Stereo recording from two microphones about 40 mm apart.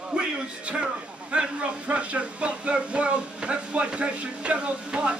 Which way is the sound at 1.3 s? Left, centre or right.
Right.